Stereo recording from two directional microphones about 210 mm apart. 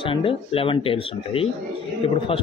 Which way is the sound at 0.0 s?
25° left (ahead or behind).